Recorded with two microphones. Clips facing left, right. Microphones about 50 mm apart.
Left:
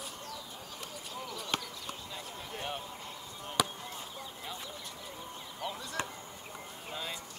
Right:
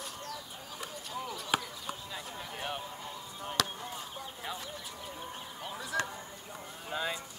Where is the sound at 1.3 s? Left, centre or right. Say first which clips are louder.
Right 3 dB; centre.